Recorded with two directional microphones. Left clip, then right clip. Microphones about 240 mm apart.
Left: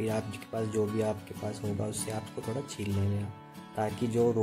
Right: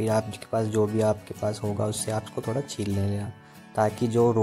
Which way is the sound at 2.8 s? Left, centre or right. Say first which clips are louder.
Right 6 dB; right.